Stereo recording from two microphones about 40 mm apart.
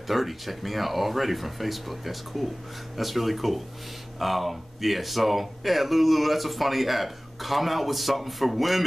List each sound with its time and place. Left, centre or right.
0.1 s speech: centre